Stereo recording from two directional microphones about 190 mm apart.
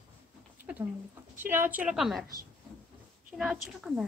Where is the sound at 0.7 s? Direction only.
5° right (ahead or behind).